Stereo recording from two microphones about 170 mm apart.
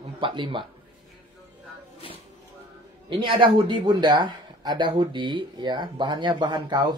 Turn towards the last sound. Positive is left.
turn(degrees=-25)  # may be behind; listen again after turning